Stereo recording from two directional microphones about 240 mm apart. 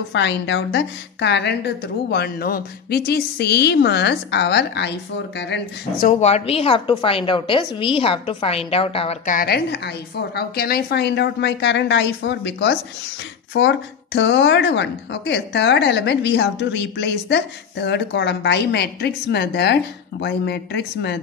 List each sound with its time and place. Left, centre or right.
0.1 s a woman's voice: left